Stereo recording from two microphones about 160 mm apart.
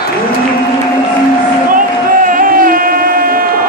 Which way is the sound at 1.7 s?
60° right (ahead or behind).